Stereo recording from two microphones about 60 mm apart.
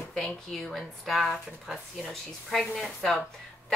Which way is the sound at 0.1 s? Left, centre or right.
Centre.